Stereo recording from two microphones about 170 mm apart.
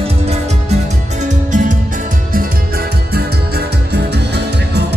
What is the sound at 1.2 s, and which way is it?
Music, 50° right (ahead or behind).